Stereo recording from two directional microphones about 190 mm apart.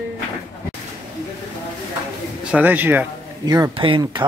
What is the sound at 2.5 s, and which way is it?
Speech, 10° right (ahead or behind).